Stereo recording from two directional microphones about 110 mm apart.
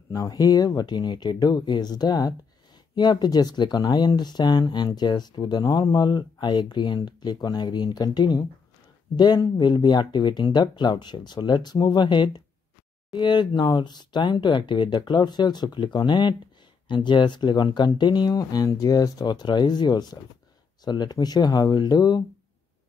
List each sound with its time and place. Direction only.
0.1 s speech: 35° left (ahead or behind)